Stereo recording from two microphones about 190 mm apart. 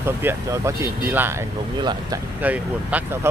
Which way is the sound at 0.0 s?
10° right (ahead or behind).